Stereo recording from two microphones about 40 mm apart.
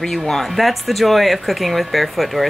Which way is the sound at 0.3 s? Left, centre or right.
Centre.